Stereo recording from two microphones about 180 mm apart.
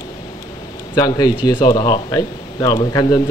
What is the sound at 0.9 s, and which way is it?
Speech, 20° left (ahead or behind).